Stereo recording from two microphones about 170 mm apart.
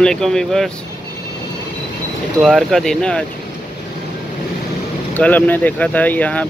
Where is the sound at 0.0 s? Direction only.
5° left (ahead or behind).